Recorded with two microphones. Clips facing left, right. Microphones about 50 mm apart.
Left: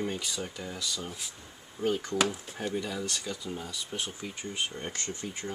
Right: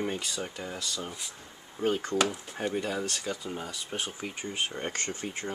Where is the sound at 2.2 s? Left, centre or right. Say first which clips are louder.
Right 1 dB; centre.